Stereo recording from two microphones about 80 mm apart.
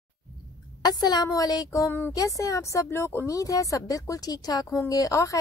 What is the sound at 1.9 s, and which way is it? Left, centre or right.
Speech, left.